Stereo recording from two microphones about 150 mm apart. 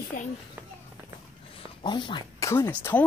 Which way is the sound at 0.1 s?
65° left (ahead or behind).